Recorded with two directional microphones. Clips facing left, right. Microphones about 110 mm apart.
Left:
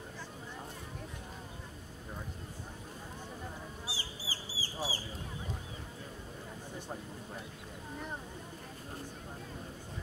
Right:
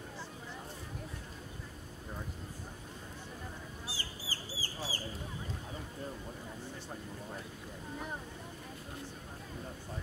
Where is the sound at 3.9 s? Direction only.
50° right (ahead or behind).